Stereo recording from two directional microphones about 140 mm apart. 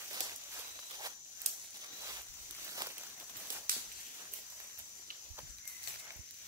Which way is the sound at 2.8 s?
30° right (ahead or behind).